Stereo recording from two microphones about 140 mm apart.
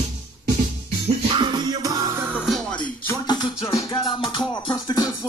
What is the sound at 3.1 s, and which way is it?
Music, 25° left (ahead or behind).